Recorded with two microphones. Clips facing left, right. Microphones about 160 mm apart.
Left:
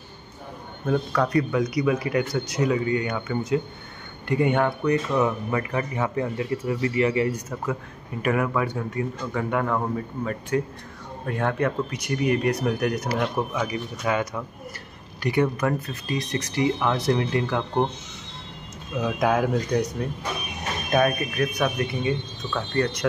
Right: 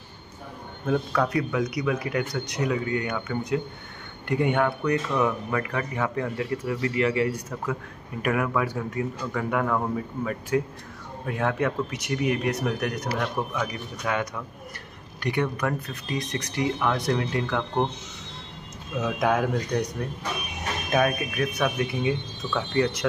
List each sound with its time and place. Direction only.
0.8 s speech: 5° right (ahead or behind)
6.0 s speech: 15° left (ahead or behind)
8.2 s speech: centre (ahead or behind)
18.9 s speech: centre (ahead or behind)